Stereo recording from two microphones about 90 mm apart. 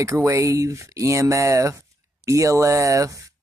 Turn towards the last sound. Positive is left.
turn(degrees=-35)  # may be behind; listen again after turning